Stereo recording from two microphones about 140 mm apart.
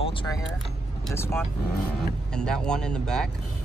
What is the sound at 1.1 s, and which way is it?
Speech, 20° left (ahead or behind).